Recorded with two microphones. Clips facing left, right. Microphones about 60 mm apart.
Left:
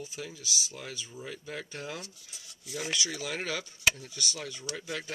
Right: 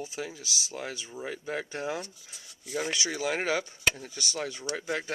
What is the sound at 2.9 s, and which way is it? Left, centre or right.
Speech, right.